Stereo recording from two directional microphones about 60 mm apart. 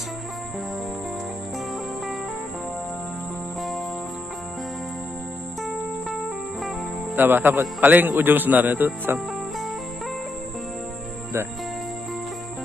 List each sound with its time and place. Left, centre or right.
5.6 s music: centre
7.2 s a man's voice: right